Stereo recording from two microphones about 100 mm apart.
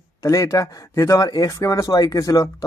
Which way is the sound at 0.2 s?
35° left (ahead or behind).